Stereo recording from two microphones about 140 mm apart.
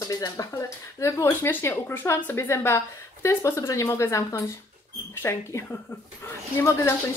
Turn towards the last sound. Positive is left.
turn(degrees=20)  # may be behind; listen again after turning